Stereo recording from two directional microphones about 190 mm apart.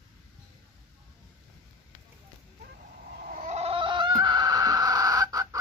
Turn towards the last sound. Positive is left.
turn(degrees=-20)  # may be behind; listen again after turning